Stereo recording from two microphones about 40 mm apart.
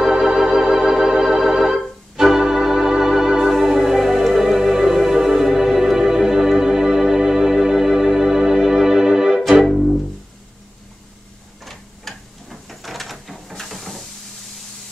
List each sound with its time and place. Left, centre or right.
0.0 s organ: centre
9.4 s music: centre
11.6 s tick-tock: centre
12.4 s printer: centre